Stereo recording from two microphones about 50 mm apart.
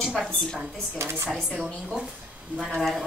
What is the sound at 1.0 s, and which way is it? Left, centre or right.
Speech, right.